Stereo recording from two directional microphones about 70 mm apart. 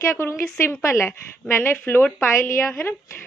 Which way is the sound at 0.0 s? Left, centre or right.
Left.